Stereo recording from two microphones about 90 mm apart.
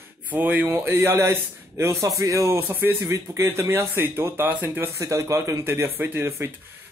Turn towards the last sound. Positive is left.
turn(degrees=-25)  # may be behind; listen again after turning